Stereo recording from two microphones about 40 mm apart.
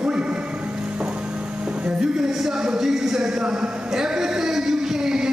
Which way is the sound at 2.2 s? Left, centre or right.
Centre.